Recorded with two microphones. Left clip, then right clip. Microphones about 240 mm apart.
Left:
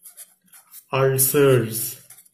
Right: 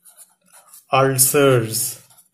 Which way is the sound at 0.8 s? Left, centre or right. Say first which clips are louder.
Right 4 dB; right.